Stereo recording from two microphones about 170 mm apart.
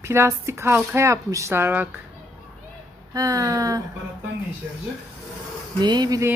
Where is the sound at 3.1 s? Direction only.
20° right (ahead or behind).